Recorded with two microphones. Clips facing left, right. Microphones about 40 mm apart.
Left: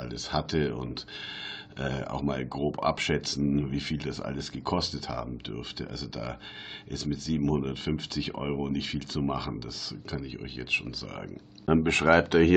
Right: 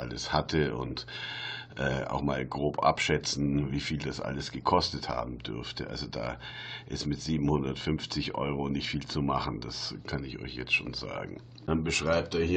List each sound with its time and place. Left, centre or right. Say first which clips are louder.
0.0 s speech: right 1 dB; centre
11.8 s speech: left 7 dB; left